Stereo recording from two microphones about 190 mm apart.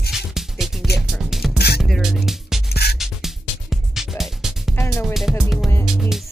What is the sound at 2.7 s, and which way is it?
Music, 55° left (ahead or behind).